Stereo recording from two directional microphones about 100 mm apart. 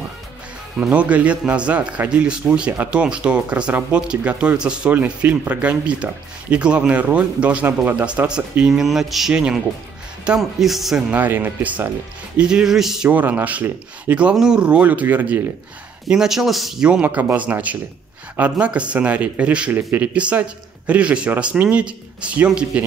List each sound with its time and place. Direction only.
0.7 s speech: 15° right (ahead or behind)
11.1 s speech: 20° right (ahead or behind)
13.1 s speech: 15° right (ahead or behind)
16.1 s speech: 5° right (ahead or behind)